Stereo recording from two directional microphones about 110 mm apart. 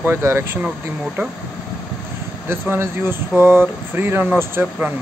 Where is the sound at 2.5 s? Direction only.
20° right (ahead or behind).